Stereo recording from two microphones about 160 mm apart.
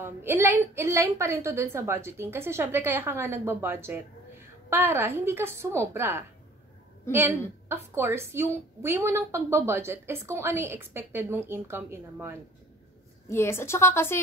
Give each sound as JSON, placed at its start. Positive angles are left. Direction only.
{"t": 0.0, "sound": "a woman's voice", "side_deg": -15}
{"t": 13.3, "sound": "a woman's voice", "side_deg": 15}